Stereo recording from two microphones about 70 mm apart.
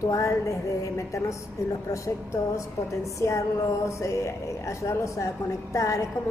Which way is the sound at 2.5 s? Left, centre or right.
Left.